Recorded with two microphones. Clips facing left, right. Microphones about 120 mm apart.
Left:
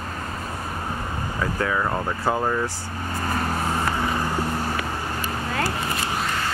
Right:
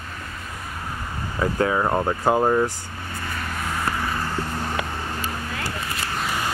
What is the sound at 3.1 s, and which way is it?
Vehicle, 40° left (ahead or behind).